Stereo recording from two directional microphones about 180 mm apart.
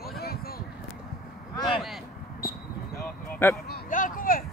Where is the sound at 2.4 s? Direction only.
55° left (ahead or behind).